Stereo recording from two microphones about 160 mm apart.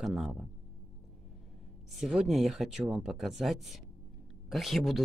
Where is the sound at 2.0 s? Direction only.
5° right (ahead or behind).